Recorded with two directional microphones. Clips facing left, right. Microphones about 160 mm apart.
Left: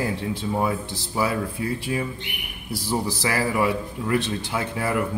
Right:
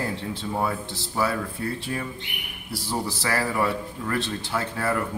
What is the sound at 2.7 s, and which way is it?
A man's voice, 15° left (ahead or behind).